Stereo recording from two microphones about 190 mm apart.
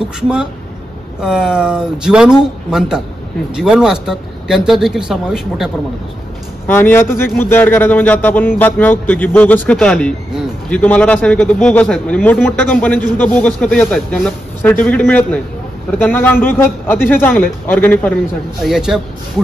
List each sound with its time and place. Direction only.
1.2 s speech: 5° right (ahead or behind)
6.7 s speech: 10° left (ahead or behind)
18.6 s speech: centre (ahead or behind)